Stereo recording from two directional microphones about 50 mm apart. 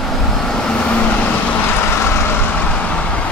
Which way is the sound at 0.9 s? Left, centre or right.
Left.